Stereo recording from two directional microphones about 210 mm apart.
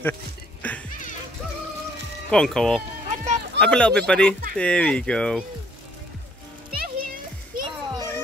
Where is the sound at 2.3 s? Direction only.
5° left (ahead or behind).